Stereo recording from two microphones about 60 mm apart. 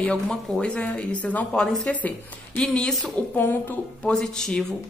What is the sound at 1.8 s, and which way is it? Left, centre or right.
Speech, left.